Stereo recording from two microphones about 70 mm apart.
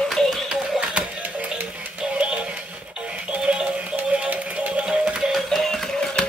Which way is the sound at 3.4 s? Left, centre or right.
Centre.